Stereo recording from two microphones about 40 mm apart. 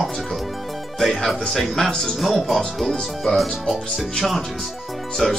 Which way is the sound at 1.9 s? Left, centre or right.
Centre.